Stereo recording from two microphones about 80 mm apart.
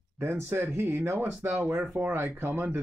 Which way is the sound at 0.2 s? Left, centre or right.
Right.